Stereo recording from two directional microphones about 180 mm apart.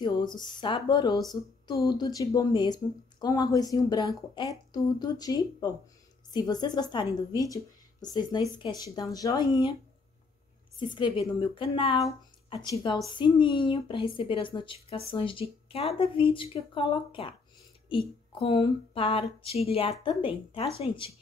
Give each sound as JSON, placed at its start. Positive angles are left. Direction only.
{"t": 0.0, "sound": "speech", "side_deg": 25}
{"t": 10.8, "sound": "speech", "side_deg": 25}